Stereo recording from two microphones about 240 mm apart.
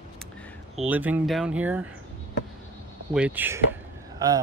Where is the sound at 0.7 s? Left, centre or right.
Centre.